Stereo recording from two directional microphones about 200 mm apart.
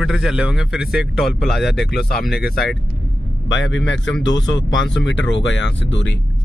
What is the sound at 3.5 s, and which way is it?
Speech, 65° left (ahead or behind).